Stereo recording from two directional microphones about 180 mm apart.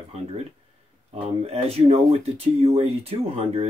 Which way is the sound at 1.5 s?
35° right (ahead or behind).